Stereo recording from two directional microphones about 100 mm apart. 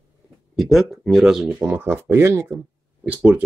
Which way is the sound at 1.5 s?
20° right (ahead or behind).